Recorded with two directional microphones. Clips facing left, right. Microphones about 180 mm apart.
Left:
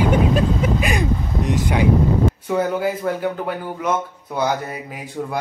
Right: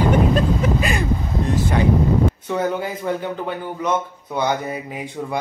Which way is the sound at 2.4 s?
5° left (ahead or behind).